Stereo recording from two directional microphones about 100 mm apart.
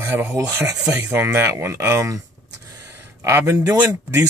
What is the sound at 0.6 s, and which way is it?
Speech, 5° right (ahead or behind).